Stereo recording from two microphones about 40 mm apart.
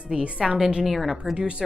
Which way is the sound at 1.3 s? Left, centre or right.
Right.